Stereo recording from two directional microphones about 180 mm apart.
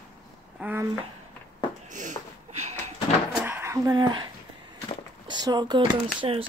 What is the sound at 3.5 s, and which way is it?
Speech, 15° right (ahead or behind).